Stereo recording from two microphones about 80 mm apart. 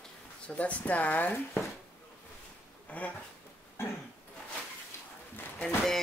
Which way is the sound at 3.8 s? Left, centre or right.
Left.